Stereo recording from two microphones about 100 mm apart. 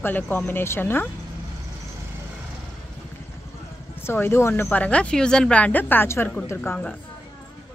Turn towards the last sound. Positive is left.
turn(degrees=20)  # may be behind; listen again after turning